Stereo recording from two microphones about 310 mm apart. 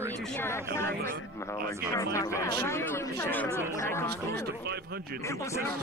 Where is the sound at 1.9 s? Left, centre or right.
Centre.